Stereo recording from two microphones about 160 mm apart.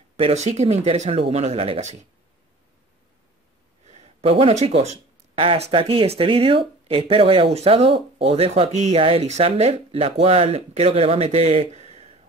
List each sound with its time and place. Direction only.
0.2 s speech: 45° right (ahead or behind)
3.8 s speech: 45° right (ahead or behind)